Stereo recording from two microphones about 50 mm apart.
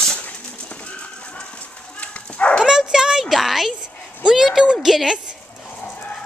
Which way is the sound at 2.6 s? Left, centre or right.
Centre.